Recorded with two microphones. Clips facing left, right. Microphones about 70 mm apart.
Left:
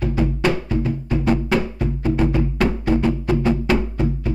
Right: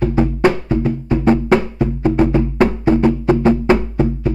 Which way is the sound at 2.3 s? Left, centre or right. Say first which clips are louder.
Right 5 dB; right.